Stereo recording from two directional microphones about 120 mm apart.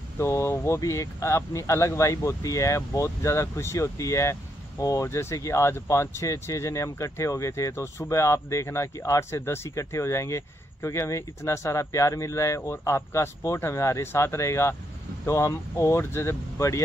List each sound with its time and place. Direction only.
0.2 s speech: 20° left (ahead or behind)